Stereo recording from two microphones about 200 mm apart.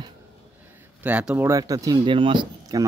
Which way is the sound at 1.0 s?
5° right (ahead or behind).